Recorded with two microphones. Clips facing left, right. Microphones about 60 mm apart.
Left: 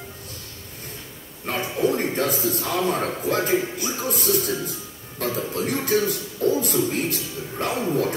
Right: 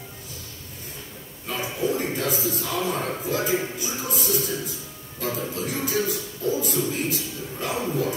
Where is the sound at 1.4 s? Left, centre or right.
Left.